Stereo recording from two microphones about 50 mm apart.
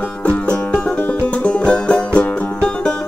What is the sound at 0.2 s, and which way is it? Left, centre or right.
Music, left.